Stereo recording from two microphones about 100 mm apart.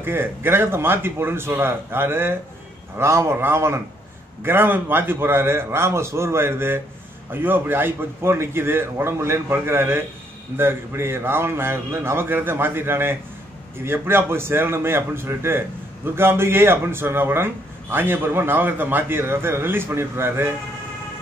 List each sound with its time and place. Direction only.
0.0 s a man's voice: 25° right (ahead or behind)